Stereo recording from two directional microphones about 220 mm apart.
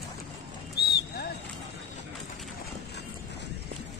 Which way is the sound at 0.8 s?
45° left (ahead or behind).